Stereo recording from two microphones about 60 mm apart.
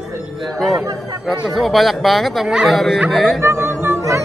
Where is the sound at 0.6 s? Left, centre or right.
Centre.